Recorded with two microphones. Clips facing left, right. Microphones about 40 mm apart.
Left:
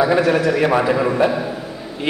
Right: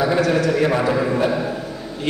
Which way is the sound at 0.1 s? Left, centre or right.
Centre.